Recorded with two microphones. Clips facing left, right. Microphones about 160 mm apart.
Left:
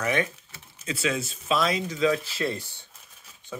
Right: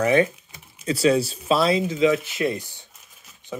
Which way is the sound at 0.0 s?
30° right (ahead or behind).